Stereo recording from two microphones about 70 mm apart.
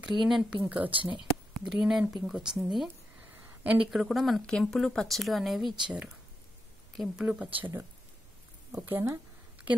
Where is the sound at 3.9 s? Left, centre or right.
Centre.